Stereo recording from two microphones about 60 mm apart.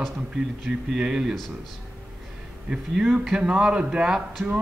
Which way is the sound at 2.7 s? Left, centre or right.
Centre.